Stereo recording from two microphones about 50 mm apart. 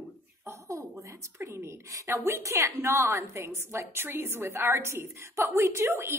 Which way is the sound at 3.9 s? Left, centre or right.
Right.